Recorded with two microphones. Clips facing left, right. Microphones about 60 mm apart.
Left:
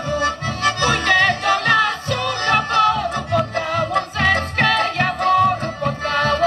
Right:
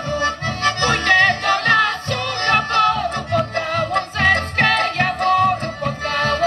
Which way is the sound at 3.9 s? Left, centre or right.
Right.